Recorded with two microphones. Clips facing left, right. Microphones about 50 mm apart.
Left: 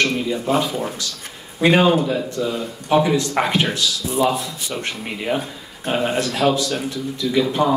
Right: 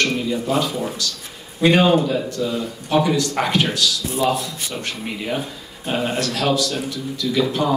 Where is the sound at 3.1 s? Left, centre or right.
Left.